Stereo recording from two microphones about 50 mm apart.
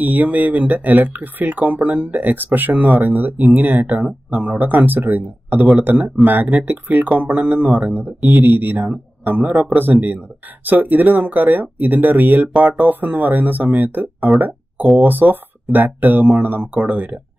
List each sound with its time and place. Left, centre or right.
0.0 s speech: right